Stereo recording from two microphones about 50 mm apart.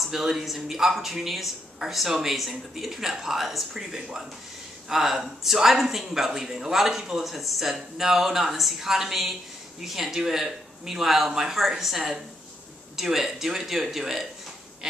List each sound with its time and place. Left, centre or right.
0.0 s speech: centre